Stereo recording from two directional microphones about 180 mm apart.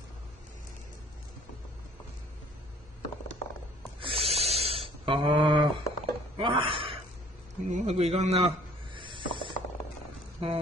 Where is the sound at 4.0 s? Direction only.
30° right (ahead or behind).